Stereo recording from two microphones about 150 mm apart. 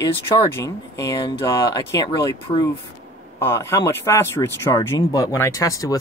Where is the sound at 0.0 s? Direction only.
20° left (ahead or behind).